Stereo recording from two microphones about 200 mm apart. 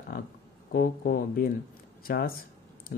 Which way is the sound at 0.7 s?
45° left (ahead or behind).